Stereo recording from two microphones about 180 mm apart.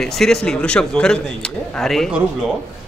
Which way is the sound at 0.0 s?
Centre (ahead or behind).